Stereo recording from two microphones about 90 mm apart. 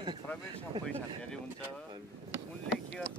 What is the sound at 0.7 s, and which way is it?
Speech, 70° right (ahead or behind).